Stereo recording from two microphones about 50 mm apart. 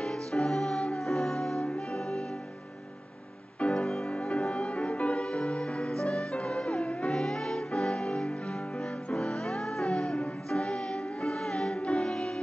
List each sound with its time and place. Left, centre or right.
0.0 s music: centre
3.6 s music: centre
7.1 s music: centre